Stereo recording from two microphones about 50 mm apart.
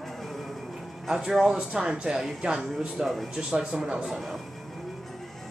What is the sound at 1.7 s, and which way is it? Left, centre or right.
Speech, centre.